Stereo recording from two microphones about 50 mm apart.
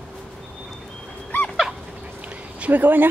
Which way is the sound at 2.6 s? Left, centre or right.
Right.